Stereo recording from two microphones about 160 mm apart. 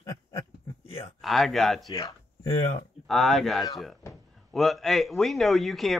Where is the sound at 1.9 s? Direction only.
25° left (ahead or behind).